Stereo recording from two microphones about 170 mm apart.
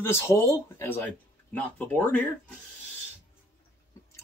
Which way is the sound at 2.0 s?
10° left (ahead or behind).